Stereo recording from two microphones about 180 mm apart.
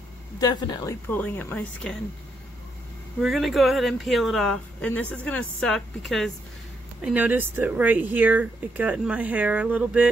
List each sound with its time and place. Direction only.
0.4 s speech: 25° left (ahead or behind)
1.0 s speech: 10° left (ahead or behind)
3.2 s speech: centre (ahead or behind)
7.1 s speech: 10° right (ahead or behind)